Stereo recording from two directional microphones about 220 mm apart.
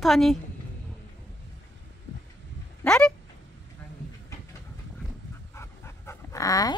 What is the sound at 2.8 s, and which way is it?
Speech, 5° left (ahead or behind).